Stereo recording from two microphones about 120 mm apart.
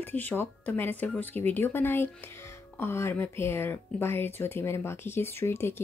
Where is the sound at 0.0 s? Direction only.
15° left (ahead or behind).